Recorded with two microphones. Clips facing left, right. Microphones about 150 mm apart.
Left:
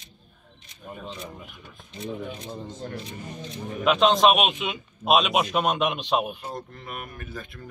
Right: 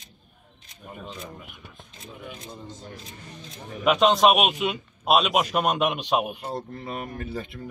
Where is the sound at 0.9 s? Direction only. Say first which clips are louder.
Left 1 dB; centre (ahead or behind).